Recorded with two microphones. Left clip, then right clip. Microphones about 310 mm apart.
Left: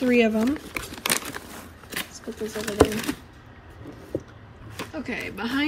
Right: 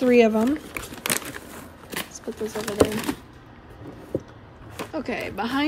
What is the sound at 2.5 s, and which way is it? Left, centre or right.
Speech, right.